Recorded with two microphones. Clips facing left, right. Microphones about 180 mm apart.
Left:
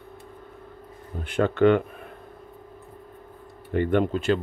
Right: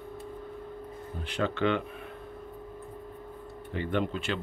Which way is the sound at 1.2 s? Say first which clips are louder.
Left 9 dB; 50° left (ahead or behind).